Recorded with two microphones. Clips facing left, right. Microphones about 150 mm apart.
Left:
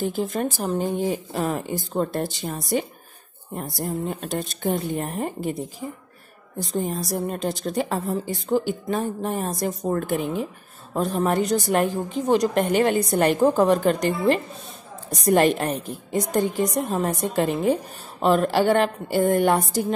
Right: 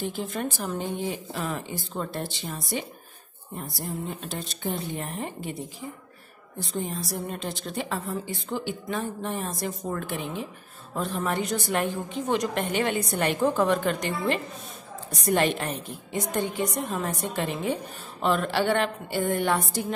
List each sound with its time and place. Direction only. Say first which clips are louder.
0.0 s a woman's voice: left 6 dB; 40° left (ahead or behind)
0.8 s a woman's voice: left 6 dB; 50° left (ahead or behind)